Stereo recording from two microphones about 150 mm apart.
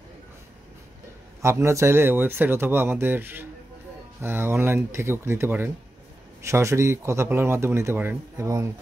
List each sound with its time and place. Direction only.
1.4 s speech: 20° right (ahead or behind)